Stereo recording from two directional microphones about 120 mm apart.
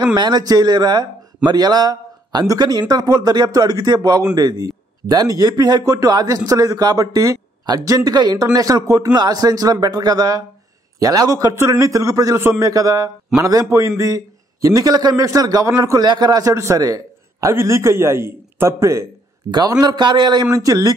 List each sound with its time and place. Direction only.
0.0 s a man's voice: 35° right (ahead or behind)